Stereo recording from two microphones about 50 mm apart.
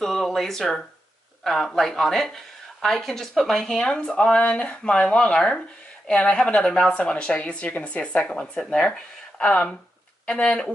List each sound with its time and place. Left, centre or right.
0.0 s a woman's voice: centre